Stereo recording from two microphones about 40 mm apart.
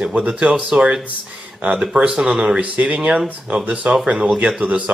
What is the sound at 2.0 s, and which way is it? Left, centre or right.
Speech, right.